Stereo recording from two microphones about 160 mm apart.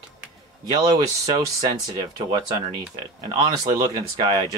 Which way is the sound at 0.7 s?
25° right (ahead or behind).